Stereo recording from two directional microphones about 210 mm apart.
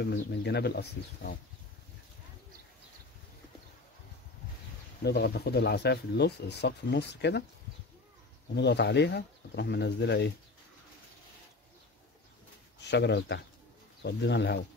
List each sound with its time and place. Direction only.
0.0 s speech: 55° left (ahead or behind)
5.0 s speech: 50° left (ahead or behind)
8.5 s speech: 55° left (ahead or behind)
12.8 s speech: 55° left (ahead or behind)